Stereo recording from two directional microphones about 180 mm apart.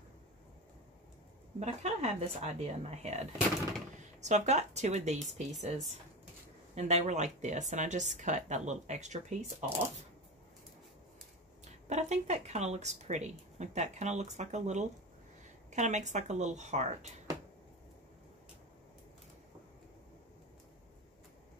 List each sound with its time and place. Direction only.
1.6 s speech: 40° right (ahead or behind)
4.2 s speech: 40° right (ahead or behind)
11.9 s speech: 40° right (ahead or behind)